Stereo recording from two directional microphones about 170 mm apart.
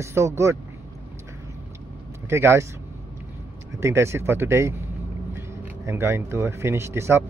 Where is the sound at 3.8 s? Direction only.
15° right (ahead or behind).